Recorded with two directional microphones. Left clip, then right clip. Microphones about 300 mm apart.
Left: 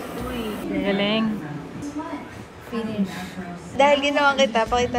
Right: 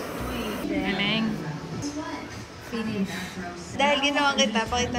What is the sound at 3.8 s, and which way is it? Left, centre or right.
A woman's voice, centre.